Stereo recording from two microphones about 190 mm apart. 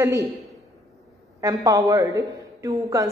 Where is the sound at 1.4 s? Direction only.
15° right (ahead or behind).